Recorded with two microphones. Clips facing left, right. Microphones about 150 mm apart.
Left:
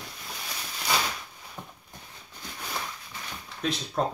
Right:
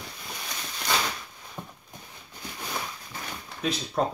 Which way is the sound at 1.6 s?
15° right (ahead or behind).